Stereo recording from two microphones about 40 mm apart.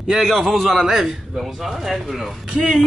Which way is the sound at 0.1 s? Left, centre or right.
Centre.